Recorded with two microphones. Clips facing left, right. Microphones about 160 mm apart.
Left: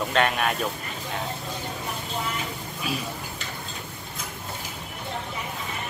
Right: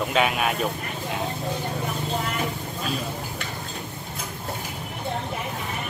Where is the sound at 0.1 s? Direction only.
5° right (ahead or behind).